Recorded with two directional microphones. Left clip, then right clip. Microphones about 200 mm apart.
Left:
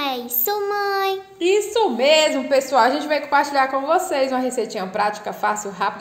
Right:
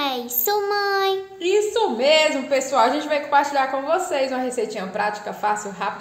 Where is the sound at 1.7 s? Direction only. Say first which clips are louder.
Left 2 dB; 35° left (ahead or behind).